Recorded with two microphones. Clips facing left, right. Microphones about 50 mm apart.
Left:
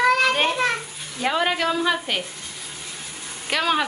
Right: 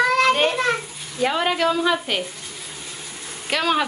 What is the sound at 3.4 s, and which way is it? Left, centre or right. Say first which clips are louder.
Speech: right 1 dB; centre.